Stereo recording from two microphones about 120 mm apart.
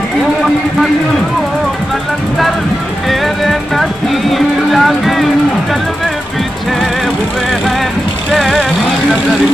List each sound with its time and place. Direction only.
3.1 s music: centre (ahead or behind)
8.3 s vehicle: centre (ahead or behind)